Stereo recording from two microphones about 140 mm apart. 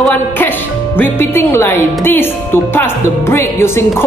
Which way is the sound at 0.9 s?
15° left (ahead or behind).